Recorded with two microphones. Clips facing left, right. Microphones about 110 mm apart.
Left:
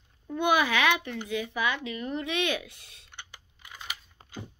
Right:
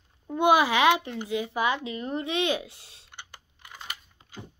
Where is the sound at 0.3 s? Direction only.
30° right (ahead or behind).